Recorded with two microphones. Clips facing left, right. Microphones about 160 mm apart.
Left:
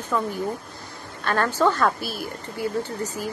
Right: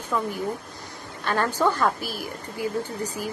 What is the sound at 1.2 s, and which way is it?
A woman's voice, 15° right (ahead or behind).